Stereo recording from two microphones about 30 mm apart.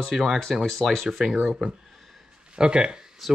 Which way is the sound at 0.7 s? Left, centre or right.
Centre.